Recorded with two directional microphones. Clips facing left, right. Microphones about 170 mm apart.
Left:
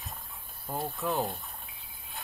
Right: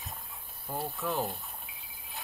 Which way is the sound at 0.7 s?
20° left (ahead or behind).